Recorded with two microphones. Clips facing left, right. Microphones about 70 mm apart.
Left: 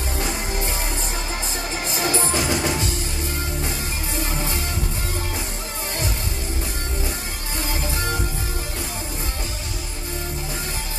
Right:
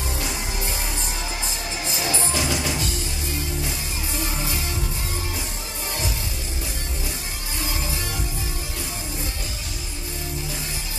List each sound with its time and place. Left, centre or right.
1.9 s music: left
7.8 s music: left